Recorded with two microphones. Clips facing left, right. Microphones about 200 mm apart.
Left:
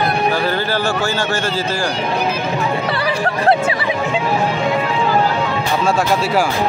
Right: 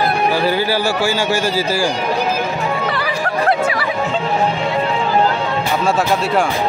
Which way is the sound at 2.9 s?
30° left (ahead or behind).